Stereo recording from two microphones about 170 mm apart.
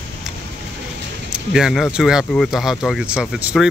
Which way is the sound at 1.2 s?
5° right (ahead or behind).